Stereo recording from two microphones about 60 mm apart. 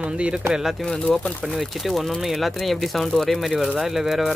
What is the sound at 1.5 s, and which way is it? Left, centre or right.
Speech, centre.